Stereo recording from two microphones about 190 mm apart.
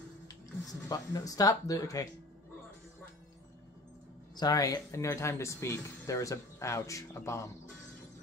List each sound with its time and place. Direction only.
0.7 s speech: 20° left (ahead or behind)
4.4 s speech: 20° left (ahead or behind)